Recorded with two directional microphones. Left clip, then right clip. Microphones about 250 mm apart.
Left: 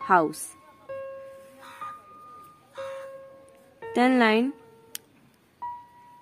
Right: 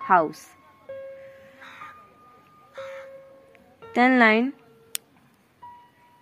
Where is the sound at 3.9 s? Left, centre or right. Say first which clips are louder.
Right 3 dB; centre.